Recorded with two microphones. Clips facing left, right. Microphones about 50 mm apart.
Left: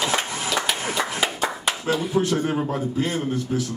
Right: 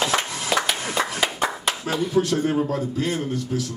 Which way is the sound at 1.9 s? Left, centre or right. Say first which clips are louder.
Even; left.